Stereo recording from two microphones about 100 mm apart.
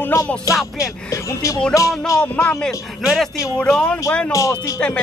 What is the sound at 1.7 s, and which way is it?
Speech, 30° left (ahead or behind).